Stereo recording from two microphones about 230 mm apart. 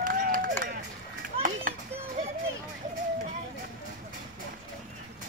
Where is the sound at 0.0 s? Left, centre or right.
Right.